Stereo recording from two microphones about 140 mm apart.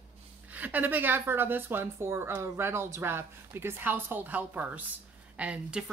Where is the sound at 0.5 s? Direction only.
10° right (ahead or behind).